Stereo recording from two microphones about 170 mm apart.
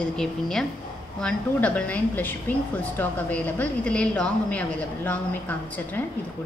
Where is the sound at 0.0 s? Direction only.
5° left (ahead or behind).